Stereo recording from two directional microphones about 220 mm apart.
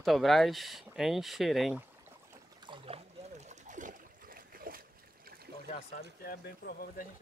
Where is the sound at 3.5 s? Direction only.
35° right (ahead or behind).